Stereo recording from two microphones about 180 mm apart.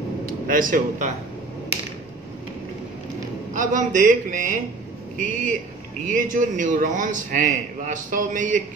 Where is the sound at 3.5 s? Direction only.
45° right (ahead or behind).